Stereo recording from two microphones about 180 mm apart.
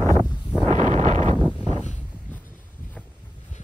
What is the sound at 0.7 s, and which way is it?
Wind noise, 40° right (ahead or behind).